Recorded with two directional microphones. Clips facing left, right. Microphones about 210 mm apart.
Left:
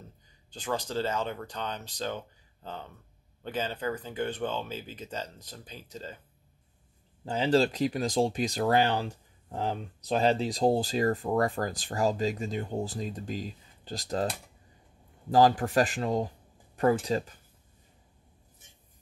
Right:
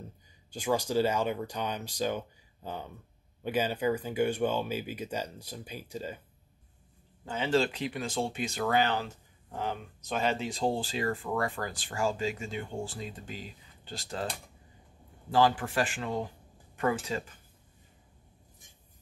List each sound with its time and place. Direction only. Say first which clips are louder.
0.5 s speech: right 4 dB; 10° right (ahead or behind)
7.2 s speech: left 3 dB; 35° left (ahead or behind)
15.3 s speech: left 4 dB; 40° left (ahead or behind)